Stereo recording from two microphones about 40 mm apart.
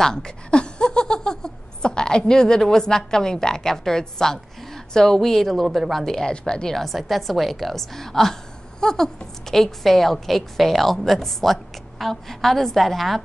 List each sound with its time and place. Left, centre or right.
0.0 s a woman's voice: centre
6.0 s a woman's voice: centre
6.7 s a woman's voice: centre